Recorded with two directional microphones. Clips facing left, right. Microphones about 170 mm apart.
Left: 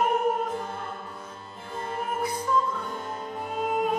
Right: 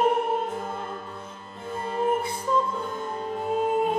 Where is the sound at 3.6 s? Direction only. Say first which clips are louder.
Right 1 dB; 25° right (ahead or behind).